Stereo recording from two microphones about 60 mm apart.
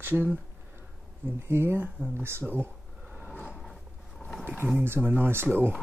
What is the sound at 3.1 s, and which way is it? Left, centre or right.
Vehicle, right.